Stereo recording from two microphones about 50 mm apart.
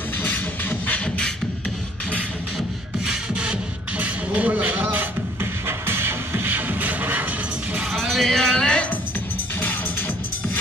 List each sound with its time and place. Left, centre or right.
0.2 s music: left
1.0 s beatboxing: centre
3.1 s music: centre
4.0 s music: right
7.9 s music: centre
9.6 s music: left